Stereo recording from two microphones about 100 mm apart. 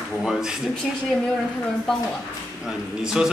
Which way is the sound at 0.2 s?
5° right (ahead or behind).